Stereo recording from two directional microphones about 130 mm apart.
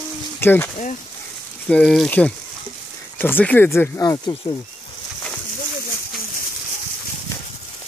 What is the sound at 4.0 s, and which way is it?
Speech, 30° left (ahead or behind).